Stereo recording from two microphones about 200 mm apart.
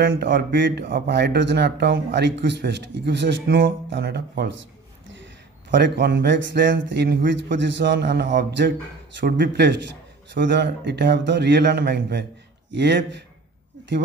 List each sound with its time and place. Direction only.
0.0 s speech: 55° right (ahead or behind)
5.7 s speech: 60° right (ahead or behind)